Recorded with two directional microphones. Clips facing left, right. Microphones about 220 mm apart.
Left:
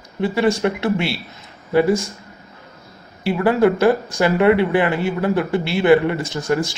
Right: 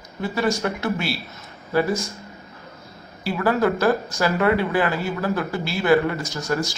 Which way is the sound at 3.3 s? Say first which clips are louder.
Left 5 dB; 25° left (ahead or behind).